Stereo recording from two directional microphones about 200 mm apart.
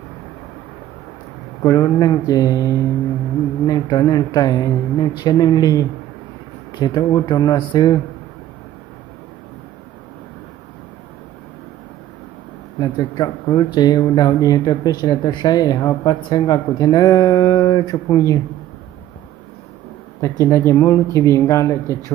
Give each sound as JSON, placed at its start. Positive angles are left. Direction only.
{"t": 1.6, "sound": "speech", "side_deg": 15}
{"t": 12.7, "sound": "speech", "side_deg": 20}
{"t": 20.4, "sound": "speech", "side_deg": 15}